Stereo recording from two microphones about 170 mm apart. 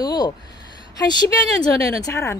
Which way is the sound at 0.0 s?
25° left (ahead or behind).